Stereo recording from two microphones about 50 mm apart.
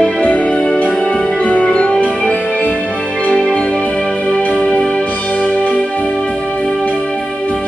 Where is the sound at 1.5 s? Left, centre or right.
Left.